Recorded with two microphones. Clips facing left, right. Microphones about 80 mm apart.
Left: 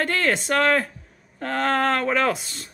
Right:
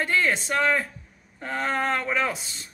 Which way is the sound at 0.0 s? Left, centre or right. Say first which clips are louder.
Left 1 dB; left.